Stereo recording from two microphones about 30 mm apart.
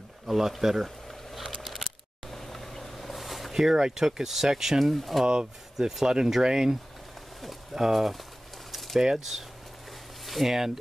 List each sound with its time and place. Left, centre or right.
0.3 s speech: centre
0.8 s a sound: centre
2.3 s vehicle: centre
3.5 s speech: centre
4.9 s speech: centre
5.2 s speech: centre
8.7 s a sound: centre
9.0 s speech: centre
10.2 s a sound: centre